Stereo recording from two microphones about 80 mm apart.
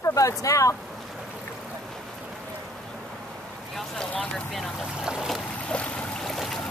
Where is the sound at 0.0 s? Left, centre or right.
Left.